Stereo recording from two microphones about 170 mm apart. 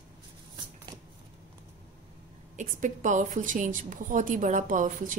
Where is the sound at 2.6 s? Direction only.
45° right (ahead or behind).